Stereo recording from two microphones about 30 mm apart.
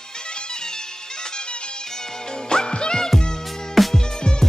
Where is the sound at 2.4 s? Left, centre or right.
Left.